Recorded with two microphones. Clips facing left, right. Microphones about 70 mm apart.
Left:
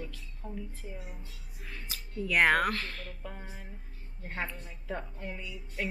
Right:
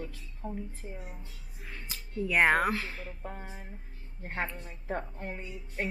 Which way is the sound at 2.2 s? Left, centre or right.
Centre.